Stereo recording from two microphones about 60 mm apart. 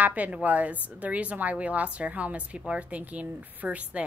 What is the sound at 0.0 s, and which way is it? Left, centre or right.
A woman's voice, right.